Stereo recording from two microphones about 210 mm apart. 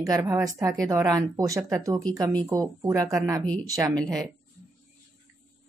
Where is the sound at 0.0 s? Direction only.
15° right (ahead or behind).